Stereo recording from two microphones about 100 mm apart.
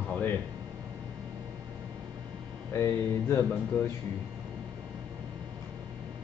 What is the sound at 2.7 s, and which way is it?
Speech, 25° left (ahead or behind).